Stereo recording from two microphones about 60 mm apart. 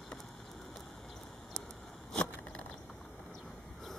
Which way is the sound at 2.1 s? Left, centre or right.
Centre.